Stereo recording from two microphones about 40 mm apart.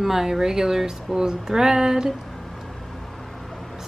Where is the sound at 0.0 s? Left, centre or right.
Centre.